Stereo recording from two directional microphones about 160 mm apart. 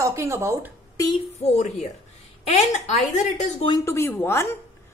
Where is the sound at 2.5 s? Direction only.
40° left (ahead or behind).